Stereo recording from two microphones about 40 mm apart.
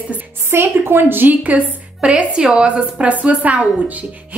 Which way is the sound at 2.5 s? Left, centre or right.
Right.